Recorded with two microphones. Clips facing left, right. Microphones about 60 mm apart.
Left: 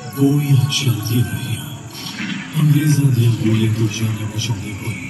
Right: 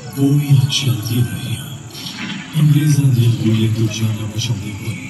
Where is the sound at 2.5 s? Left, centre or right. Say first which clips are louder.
Right 1 dB; left.